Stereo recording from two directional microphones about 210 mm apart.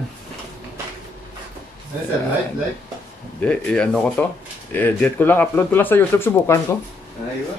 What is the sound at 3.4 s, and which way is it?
Speech, 5° left (ahead or behind).